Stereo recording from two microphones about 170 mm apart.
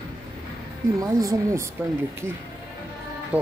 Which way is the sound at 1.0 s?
20° right (ahead or behind).